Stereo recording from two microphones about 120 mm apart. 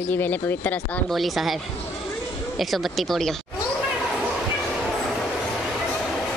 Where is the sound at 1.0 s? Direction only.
Centre (ahead or behind).